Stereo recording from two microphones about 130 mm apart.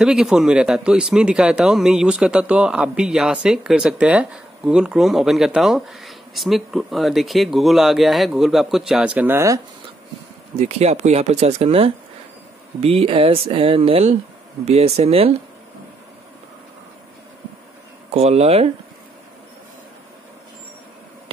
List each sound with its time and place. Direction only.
0.0 s speech: 5° right (ahead or behind); by 9.6 s 20° right (ahead or behind)
10.6 s speech: 55° right (ahead or behind)
18.1 s speech: 55° right (ahead or behind)